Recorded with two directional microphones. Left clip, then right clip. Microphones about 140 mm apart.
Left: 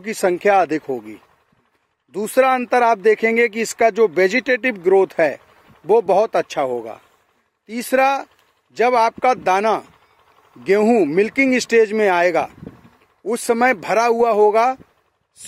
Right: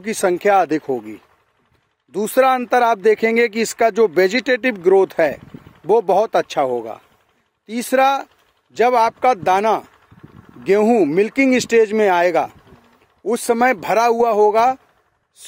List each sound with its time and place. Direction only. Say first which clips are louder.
0.0 s speech: even; 20° right (ahead or behind)